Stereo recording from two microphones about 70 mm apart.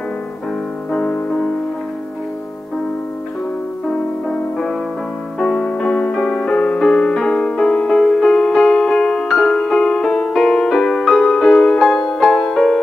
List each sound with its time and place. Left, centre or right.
0.9 s music: centre
3.9 s music: centre